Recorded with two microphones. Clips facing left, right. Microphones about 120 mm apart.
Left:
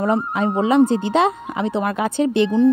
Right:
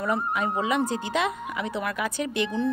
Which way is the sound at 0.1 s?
30° left (ahead or behind).